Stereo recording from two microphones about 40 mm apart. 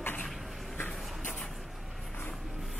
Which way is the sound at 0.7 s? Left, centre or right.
Left.